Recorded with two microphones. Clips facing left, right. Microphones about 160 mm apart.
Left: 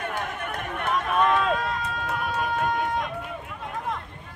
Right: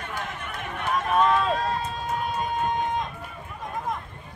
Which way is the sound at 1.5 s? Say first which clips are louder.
Right 1 dB; 35° right (ahead or behind).